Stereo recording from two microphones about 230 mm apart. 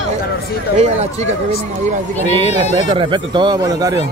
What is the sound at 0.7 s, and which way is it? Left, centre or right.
Speech, right.